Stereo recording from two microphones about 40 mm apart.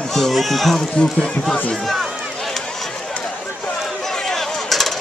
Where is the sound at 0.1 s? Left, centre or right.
Centre.